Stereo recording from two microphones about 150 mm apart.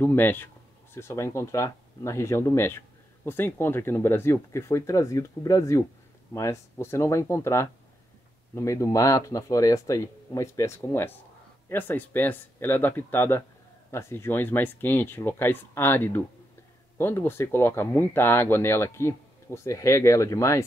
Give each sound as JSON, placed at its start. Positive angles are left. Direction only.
{"t": 0.0, "sound": "speech", "side_deg": 15}